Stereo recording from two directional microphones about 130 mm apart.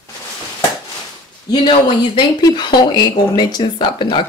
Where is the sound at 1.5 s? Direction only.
40° left (ahead or behind).